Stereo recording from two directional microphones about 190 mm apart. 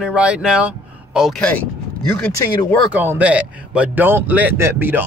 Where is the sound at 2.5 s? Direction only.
20° left (ahead or behind).